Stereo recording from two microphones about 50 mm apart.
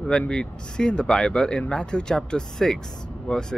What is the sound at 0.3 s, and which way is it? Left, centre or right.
Speech, centre.